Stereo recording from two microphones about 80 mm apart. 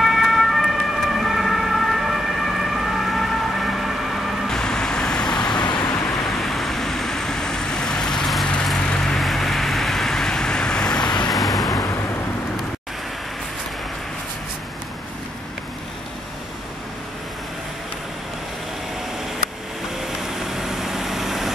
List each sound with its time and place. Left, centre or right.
0.0 s emergency vehicle: centre
5.6 s vehicle: left
6.0 s vehicle: centre
11.1 s vehicle: left
20.5 s vehicle: centre